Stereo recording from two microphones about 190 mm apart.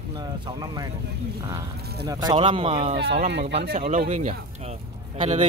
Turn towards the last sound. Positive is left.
turn(degrees=-30)  # may be behind; listen again after turning